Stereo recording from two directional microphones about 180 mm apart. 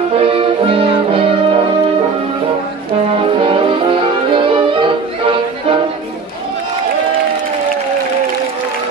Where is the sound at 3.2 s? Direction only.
30° right (ahead or behind).